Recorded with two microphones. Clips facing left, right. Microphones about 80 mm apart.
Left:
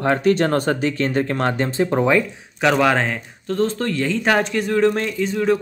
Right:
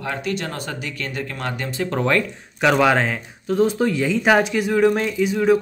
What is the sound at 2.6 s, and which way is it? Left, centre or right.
Speech, centre.